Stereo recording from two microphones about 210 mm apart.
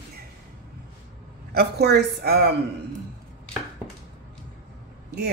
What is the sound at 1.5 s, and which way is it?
Speech, 50° right (ahead or behind).